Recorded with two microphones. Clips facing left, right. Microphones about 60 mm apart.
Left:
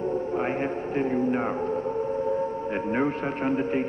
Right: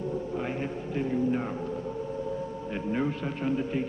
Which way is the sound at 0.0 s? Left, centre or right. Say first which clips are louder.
Left 5 dB; left.